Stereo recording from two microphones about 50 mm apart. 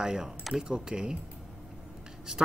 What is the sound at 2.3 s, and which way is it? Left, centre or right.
Speech, centre.